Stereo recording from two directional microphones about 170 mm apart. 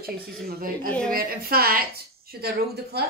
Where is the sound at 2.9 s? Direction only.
70° right (ahead or behind).